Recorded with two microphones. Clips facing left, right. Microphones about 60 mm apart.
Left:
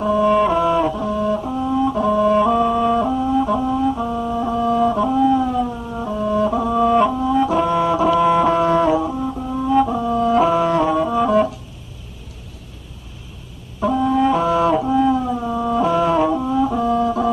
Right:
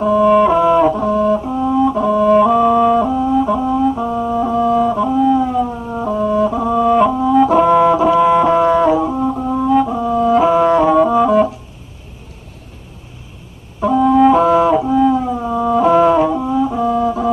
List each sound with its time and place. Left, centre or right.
0.0 s music: centre
0.9 s music: right
1.3 s brass instrument: centre
1.8 s music: centre
5.7 s music: right
6.2 s music: centre
7.5 s brass instrument: centre
9.0 s music: right
9.6 s music: centre
13.7 s music: centre